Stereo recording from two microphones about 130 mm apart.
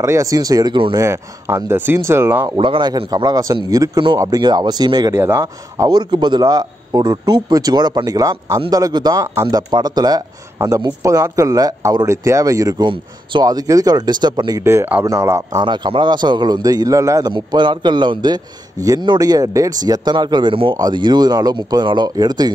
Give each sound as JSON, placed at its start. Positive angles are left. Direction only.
{"t": 0.0, "sound": "speech", "side_deg": -25}
{"t": 0.9, "sound": "speech", "side_deg": -20}
{"t": 2.5, "sound": "speech", "side_deg": -40}
{"t": 14.6, "sound": "speech", "side_deg": -20}
{"t": 15.6, "sound": "speech", "side_deg": -35}
{"t": 17.3, "sound": "speech", "side_deg": -35}